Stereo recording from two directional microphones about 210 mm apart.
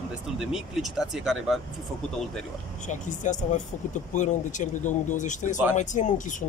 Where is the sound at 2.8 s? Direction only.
35° left (ahead or behind).